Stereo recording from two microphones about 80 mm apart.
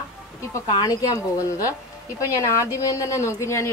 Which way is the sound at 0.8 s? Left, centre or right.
Left.